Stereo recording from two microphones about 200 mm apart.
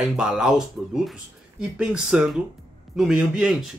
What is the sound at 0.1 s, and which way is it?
Speech, 5° right (ahead or behind).